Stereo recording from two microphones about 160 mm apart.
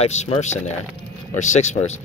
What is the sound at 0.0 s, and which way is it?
Speech, 45° left (ahead or behind).